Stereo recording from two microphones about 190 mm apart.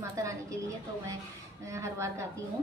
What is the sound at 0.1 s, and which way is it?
A woman's voice, 15° right (ahead or behind).